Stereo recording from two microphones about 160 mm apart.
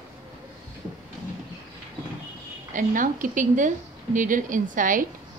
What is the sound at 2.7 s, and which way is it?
A woman's voice, 55° right (ahead or behind).